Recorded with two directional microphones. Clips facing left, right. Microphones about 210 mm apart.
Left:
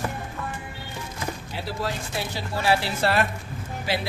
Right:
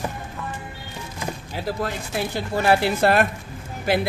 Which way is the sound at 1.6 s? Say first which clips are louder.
Right 3 dB; 55° right (ahead or behind).